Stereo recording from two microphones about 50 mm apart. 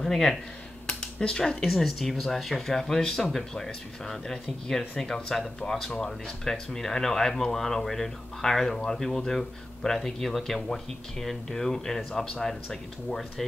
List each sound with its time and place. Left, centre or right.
0.0 s speech: centre
0.8 s a sound: centre
1.6 s speech: centre